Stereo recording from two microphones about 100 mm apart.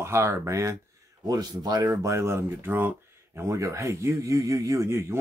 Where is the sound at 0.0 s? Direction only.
25° right (ahead or behind).